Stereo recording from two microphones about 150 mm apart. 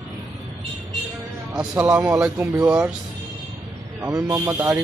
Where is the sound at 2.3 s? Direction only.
20° right (ahead or behind).